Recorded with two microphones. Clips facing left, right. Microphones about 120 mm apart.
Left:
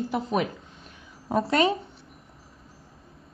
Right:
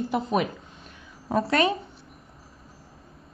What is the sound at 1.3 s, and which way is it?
Speech, 20° left (ahead or behind).